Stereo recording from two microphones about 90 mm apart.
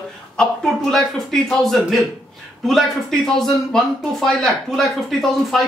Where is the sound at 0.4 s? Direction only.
5° left (ahead or behind).